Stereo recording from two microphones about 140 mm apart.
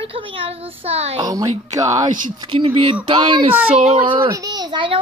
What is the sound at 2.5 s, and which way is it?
A child's voice, 40° right (ahead or behind).